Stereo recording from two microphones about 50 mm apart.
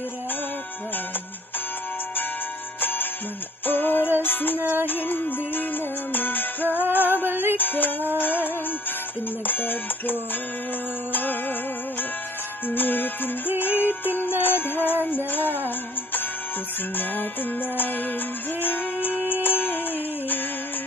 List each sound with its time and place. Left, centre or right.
2.8 s music: left
4.6 s music: right
4.8 s music: left
6.8 s music: right
7.5 s music: left
9.5 s music: left
12.6 s music: left
16.9 s music: left